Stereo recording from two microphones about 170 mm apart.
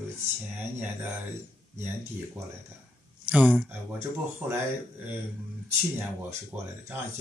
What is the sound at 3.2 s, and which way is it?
Speech, 10° right (ahead or behind).